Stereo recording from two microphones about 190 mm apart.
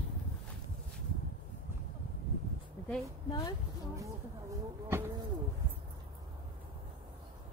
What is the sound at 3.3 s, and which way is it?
Speech, 25° left (ahead or behind).